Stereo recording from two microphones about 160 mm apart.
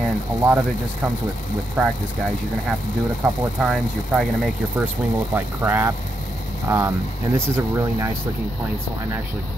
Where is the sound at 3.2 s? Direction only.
5° right (ahead or behind).